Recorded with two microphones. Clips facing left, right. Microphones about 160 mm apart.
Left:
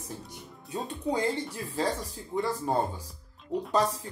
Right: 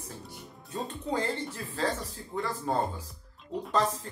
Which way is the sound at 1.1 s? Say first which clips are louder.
Left 1 dB; 15° left (ahead or behind).